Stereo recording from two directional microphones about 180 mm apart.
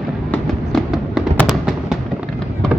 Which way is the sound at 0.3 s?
Centre (ahead or behind).